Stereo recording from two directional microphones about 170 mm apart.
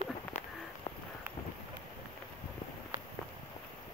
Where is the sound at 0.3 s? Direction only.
40° left (ahead or behind).